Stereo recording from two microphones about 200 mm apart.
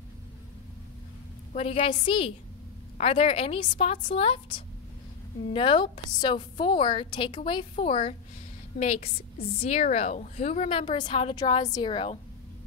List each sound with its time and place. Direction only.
1.5 s a woman's voice: 30° left (ahead or behind)